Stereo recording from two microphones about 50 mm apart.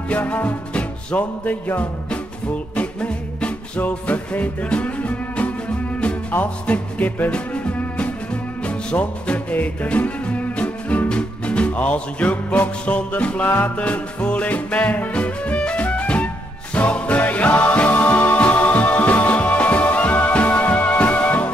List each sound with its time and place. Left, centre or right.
0.1 s music: left
2.7 s music: left